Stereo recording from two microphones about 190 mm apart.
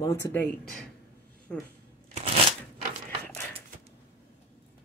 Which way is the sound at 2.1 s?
30° right (ahead or behind).